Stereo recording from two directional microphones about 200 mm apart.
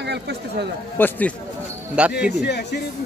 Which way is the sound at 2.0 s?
5° right (ahead or behind).